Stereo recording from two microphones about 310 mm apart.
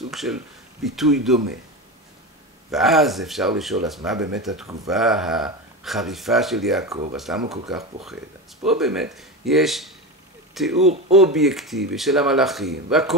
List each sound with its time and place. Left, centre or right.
0.1 s speech: centre
2.7 s speech: centre
7.4 s speech: centre
7.7 s speech: centre
10.8 s speech: centre
11.3 s speech: centre